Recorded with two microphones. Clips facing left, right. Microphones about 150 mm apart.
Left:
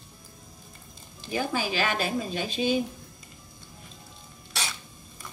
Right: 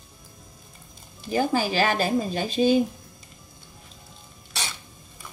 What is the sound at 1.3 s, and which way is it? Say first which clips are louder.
A woman's voice: right 5 dB; 40° right (ahead or behind).